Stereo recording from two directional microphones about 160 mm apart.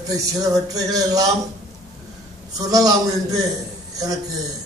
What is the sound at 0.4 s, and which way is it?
Music, 20° right (ahead or behind).